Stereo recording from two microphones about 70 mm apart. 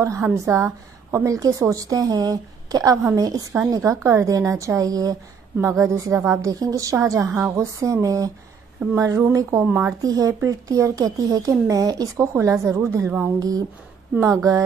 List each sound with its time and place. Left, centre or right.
0.0 s a woman's voice: right
5.6 s a woman's voice: right
7.2 s a woman's voice: right
7.6 s a woman's voice: right
10.0 s a woman's voice: right
12.2 s a woman's voice: right
13.4 s a woman's voice: right